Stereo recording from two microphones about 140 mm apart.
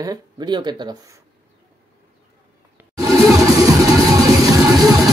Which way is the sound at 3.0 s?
25° right (ahead or behind).